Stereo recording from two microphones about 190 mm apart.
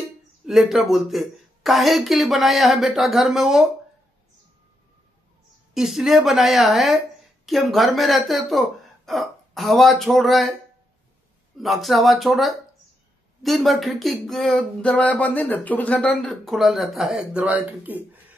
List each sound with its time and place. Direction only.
0.5 s speech: centre (ahead or behind)
5.8 s speech: centre (ahead or behind)
11.5 s speech: centre (ahead or behind)